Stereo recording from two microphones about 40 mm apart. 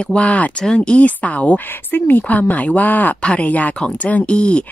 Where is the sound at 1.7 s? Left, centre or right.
Left.